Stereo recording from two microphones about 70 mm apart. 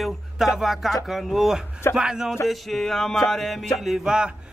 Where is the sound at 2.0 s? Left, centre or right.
Centre.